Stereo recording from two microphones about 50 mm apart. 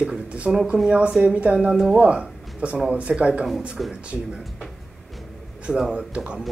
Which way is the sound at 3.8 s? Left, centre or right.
Centre.